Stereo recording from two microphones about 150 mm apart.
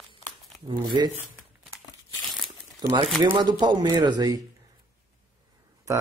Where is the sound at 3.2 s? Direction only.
30° right (ahead or behind).